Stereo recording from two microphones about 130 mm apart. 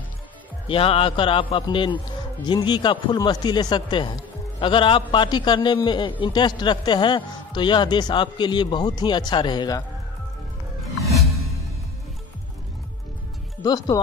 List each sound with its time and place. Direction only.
0.7 s a man's voice: 45° left (ahead or behind)
11.0 s music: centre (ahead or behind)
13.6 s speech: 30° left (ahead or behind)